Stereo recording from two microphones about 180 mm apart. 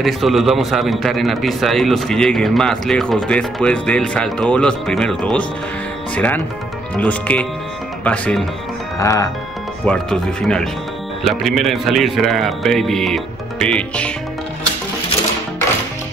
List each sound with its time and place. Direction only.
0.0 s a man's voice: centre (ahead or behind)
8.9 s speech: 20° left (ahead or behind)
9.8 s a man's voice: 5° left (ahead or behind)